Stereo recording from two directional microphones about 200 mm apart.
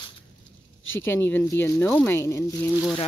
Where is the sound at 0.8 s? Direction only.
75° left (ahead or behind).